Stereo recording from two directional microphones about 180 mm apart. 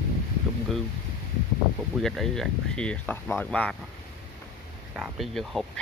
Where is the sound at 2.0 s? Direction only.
Centre (ahead or behind).